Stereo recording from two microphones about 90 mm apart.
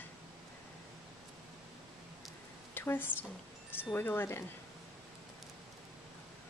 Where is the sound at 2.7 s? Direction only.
25° left (ahead or behind).